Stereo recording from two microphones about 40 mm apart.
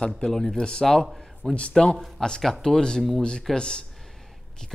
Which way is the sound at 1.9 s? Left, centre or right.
Centre.